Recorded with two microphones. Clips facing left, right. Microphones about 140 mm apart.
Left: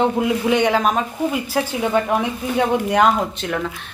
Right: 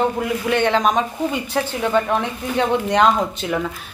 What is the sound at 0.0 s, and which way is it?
Speech, 15° left (ahead or behind).